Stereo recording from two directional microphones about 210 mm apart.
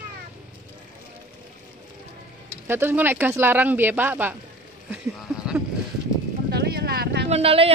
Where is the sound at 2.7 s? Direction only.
10° right (ahead or behind).